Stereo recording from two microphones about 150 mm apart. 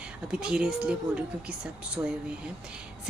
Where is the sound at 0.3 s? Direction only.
5° right (ahead or behind).